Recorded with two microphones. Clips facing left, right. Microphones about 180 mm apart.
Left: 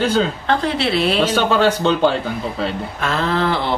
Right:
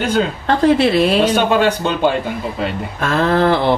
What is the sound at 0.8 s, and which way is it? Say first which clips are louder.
Speech: right 5 dB; 50° right (ahead or behind).